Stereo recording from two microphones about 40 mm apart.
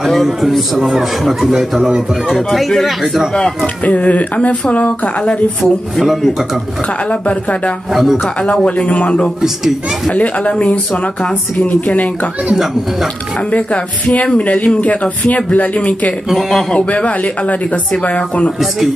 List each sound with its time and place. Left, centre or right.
0.0 s a man's voice: centre
2.5 s a man's voice: centre
3.6 s speech: left
5.6 s a man's voice: centre
7.1 s speech: left
7.9 s speech: centre
8.6 s speech: left
13.5 s speech: left
16.3 s a man's voice: centre
16.7 s speech: left